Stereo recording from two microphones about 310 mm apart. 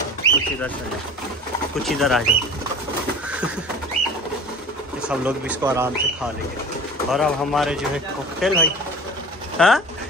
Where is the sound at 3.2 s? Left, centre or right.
Centre.